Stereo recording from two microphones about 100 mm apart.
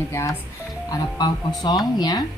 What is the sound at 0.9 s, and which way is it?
Speech, 40° left (ahead or behind).